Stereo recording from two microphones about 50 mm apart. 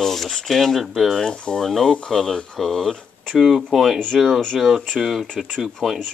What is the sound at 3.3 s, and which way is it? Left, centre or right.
Speech, centre.